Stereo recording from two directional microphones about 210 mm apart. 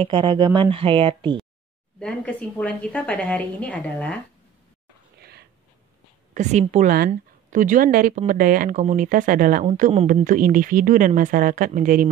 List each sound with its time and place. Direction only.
0.0 s speech: 20° right (ahead or behind)
2.0 s a woman's voice: 5° left (ahead or behind)
6.3 s a woman's voice: 35° right (ahead or behind)